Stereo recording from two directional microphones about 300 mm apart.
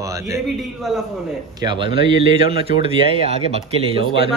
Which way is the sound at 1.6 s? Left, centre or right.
Centre.